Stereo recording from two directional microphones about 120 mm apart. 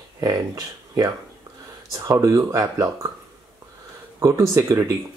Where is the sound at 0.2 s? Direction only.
30° right (ahead or behind).